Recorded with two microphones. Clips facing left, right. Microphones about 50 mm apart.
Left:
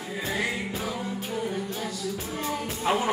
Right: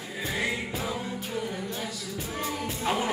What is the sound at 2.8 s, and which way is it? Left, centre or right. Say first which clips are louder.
Music: left 3 dB; centre.